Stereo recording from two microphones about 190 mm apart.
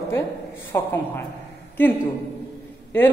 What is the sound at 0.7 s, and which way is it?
Speech, 15° left (ahead or behind).